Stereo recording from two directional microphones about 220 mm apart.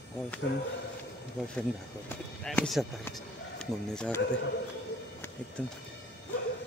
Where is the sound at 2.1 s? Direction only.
5° left (ahead or behind).